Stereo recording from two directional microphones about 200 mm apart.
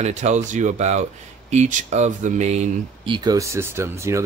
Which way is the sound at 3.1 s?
15° right (ahead or behind).